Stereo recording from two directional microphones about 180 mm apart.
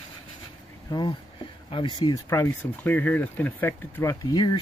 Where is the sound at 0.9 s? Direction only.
25° left (ahead or behind).